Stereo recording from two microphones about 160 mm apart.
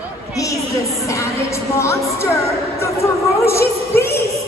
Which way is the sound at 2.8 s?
15° left (ahead or behind).